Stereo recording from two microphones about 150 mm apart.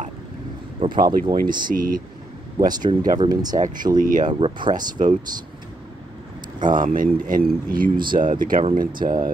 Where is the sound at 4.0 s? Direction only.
60° right (ahead or behind).